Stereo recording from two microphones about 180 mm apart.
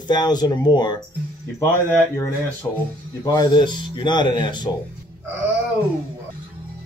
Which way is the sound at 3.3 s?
25° left (ahead or behind).